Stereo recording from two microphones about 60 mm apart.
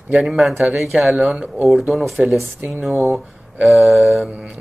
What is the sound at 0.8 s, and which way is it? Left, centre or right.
Mantra, centre.